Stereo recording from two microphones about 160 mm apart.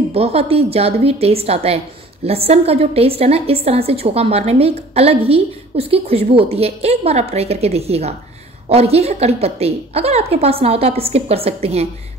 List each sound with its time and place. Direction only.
0.1 s a woman's voice: 40° right (ahead or behind)